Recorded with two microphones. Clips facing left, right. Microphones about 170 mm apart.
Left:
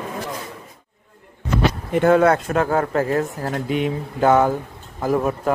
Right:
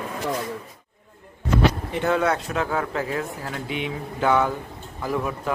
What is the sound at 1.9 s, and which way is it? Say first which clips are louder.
Speech: left 7 dB; 50° left (ahead or behind).